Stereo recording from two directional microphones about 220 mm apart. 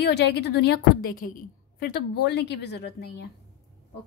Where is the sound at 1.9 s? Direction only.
50° left (ahead or behind).